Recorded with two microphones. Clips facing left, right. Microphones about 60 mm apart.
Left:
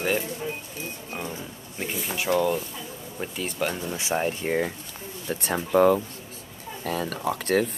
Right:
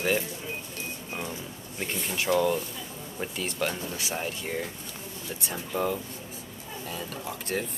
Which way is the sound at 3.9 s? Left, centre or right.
Left.